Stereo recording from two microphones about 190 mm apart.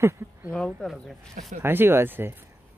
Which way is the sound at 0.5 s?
Centre (ahead or behind).